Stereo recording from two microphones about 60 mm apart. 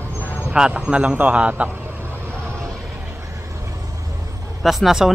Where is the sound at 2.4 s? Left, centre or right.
Right.